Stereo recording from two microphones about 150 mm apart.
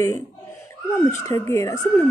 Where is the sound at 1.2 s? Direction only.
20° left (ahead or behind).